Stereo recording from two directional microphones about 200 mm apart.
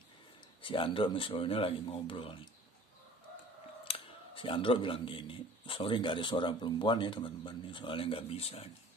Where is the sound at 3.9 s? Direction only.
25° left (ahead or behind).